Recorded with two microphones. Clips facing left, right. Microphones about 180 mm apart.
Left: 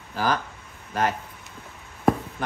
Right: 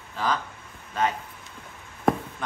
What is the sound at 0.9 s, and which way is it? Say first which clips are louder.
Speech: left 1 dB; 70° left (ahead or behind).